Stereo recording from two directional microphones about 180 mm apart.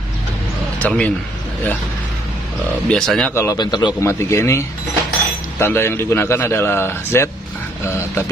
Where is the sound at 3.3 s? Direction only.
20° left (ahead or behind).